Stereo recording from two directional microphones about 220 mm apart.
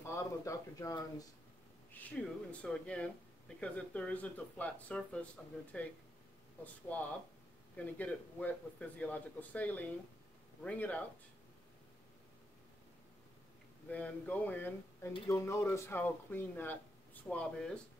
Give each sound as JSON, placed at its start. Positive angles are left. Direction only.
{"t": 0.0, "sound": "speech", "side_deg": 15}
{"t": 13.8, "sound": "speech", "side_deg": 5}